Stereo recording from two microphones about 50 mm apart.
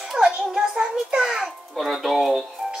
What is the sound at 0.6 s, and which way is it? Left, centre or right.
Speech, centre.